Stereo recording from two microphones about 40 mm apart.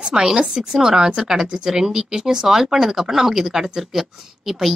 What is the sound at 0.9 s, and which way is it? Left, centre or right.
Speech, centre.